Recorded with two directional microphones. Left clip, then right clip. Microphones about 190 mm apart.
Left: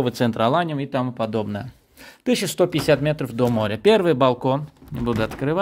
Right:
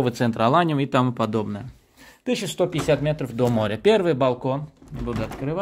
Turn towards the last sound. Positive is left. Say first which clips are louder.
# left 5 dB
turn(degrees=45)  # may be behind; listen again after turning